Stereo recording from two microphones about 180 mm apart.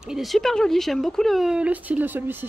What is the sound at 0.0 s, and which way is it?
Speech, centre (ahead or behind).